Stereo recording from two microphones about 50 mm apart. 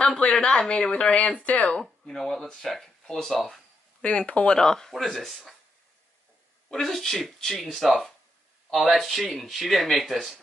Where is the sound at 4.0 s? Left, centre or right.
Left.